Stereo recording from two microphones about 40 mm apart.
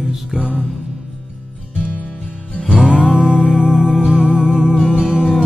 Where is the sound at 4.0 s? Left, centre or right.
Centre.